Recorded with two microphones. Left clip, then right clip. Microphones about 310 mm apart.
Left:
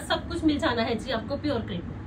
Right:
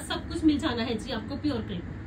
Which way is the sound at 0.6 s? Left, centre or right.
Centre.